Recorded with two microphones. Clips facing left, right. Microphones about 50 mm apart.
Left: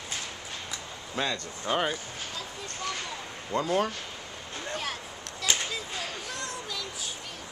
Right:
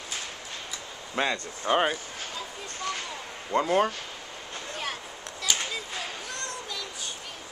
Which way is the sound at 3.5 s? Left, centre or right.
Right.